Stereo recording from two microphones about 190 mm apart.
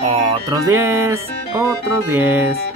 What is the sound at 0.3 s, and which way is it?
Music, 15° right (ahead or behind).